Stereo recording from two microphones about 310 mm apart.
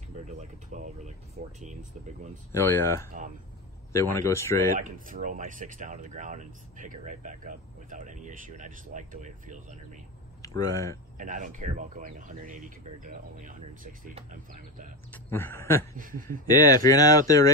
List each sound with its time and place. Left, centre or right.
0.1 s speech: right
2.5 s speech: centre
4.7 s speech: right
10.4 s speech: centre
11.1 s speech: right
15.2 s speech: centre
16.0 s speech: right
16.4 s speech: centre